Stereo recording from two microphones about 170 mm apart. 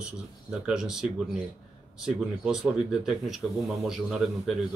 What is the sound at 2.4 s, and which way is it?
Speech, centre (ahead or behind).